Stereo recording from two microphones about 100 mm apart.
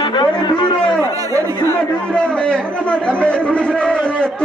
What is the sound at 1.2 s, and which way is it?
Chatter, 35° right (ahead or behind).